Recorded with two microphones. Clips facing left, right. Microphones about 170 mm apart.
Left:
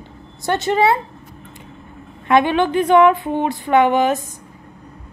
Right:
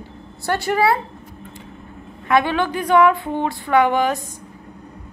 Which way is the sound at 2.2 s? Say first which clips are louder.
Left 3 dB; 25° left (ahead or behind).